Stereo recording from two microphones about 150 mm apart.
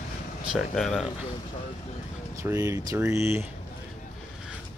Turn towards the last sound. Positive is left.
turn(degrees=-15)  # may be behind; listen again after turning